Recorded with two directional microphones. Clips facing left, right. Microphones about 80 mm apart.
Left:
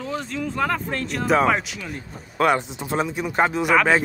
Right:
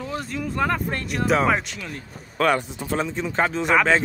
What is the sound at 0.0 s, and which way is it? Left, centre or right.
Speech, centre.